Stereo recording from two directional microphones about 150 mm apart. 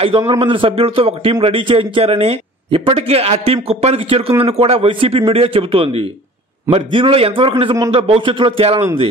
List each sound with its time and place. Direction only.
0.3 s speech: 35° right (ahead or behind)